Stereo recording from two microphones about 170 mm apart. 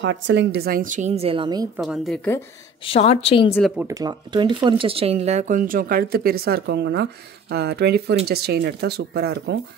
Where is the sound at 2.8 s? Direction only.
35° left (ahead or behind).